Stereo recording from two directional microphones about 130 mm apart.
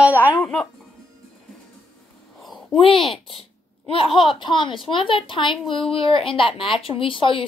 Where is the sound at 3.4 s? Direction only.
50° left (ahead or behind).